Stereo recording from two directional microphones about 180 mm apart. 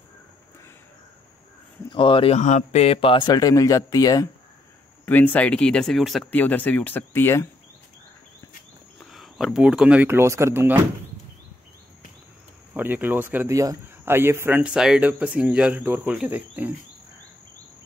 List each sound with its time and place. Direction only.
1.9 s speech: 30° left (ahead or behind); by 7.4 s 15° left (ahead or behind)
9.0 s speech: centre (ahead or behind)
12.7 s speech: 10° right (ahead or behind)